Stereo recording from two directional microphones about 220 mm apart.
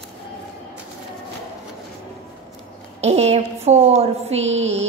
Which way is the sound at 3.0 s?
30° right (ahead or behind).